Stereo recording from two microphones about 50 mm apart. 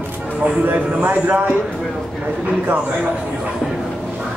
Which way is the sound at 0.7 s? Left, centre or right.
Right.